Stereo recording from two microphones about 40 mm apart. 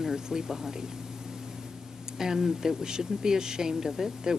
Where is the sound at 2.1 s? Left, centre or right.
Centre.